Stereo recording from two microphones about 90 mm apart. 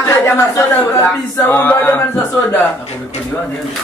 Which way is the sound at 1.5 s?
20° left (ahead or behind).